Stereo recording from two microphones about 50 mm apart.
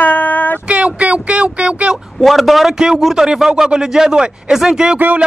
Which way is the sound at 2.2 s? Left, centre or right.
Centre.